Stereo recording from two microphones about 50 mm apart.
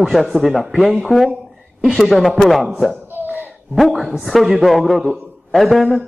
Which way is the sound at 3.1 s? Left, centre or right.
Right.